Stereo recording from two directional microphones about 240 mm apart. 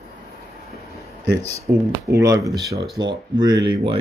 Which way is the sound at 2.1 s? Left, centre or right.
Centre.